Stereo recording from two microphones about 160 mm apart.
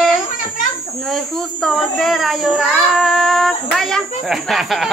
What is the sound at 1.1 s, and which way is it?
Child singing, 5° left (ahead or behind).